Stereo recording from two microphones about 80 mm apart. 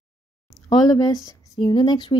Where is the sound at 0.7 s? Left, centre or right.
Left.